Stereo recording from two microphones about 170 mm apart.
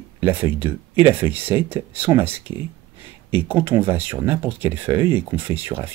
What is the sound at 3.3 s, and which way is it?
Speech, 10° right (ahead or behind).